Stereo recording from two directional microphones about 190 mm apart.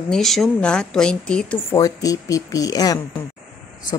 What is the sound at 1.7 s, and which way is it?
A woman's voice, 20° left (ahead or behind).